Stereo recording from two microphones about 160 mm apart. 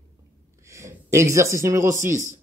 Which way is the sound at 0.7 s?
20° right (ahead or behind).